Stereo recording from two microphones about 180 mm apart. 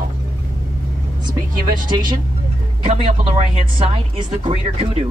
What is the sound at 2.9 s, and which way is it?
Speech, 40° right (ahead or behind).